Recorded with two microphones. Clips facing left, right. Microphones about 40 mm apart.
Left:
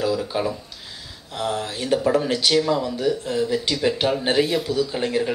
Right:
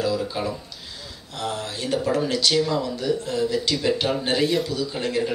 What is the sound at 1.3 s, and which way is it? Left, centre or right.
Speech, centre.